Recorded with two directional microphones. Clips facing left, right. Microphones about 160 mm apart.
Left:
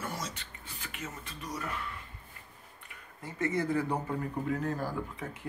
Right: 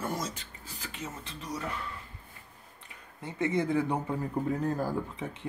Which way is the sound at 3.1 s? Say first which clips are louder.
Right 2 dB; 20° right (ahead or behind).